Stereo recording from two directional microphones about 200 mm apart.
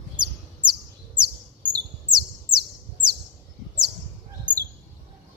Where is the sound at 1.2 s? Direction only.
20° right (ahead or behind).